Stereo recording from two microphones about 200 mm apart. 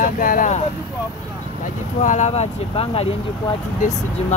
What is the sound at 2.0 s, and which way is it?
Speech, 35° left (ahead or behind).